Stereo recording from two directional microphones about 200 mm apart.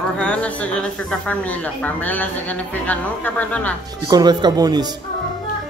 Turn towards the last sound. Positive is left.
turn(degrees=-20)  # may be behind; listen again after turning